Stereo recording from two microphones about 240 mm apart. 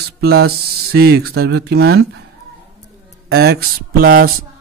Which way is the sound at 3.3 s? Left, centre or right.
Right.